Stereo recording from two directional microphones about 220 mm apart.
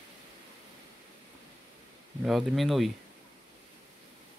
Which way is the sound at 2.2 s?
Centre (ahead or behind).